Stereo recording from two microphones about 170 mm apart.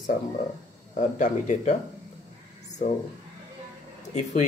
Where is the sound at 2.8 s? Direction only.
50° left (ahead or behind).